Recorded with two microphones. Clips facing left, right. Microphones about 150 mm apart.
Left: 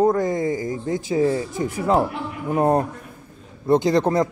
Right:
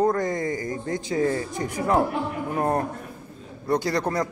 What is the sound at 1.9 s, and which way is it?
A man's voice, 20° left (ahead or behind).